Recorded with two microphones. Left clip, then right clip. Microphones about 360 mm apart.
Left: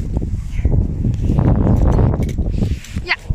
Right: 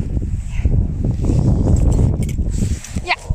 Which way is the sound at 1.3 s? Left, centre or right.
Left.